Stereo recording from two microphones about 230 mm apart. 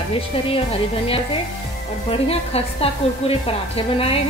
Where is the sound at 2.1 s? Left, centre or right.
Left.